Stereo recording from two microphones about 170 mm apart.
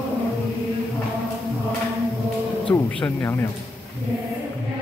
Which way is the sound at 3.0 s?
15° left (ahead or behind).